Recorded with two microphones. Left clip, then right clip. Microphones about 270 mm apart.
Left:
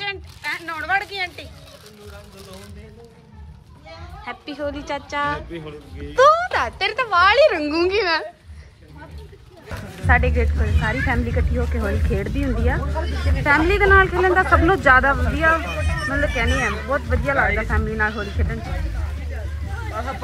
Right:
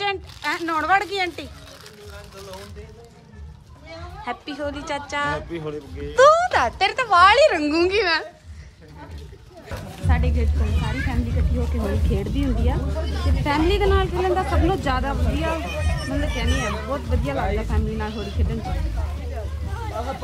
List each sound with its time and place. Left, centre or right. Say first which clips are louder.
0.0 s speech: right 3 dB; centre
4.2 s speech: even; centre
5.5 s speech: right 4 dB; right
6.1 s speech: even; centre
9.7 s speech: left 10 dB; centre